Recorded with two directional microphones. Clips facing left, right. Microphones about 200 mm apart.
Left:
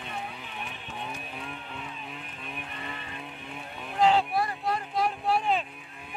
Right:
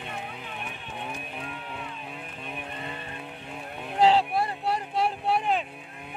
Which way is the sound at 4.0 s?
30° right (ahead or behind).